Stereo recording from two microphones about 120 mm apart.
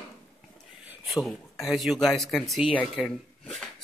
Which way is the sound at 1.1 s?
Centre (ahead or behind).